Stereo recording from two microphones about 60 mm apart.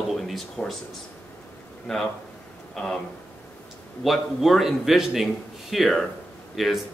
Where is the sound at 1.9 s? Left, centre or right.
Centre.